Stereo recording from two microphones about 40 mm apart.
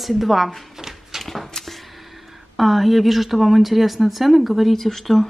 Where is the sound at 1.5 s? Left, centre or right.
Centre.